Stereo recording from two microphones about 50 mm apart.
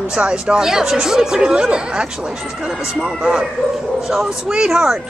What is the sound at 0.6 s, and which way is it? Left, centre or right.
Speech, centre.